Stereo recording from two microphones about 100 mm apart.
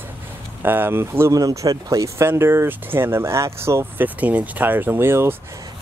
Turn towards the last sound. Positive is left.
turn(degrees=-25)  # may be behind; listen again after turning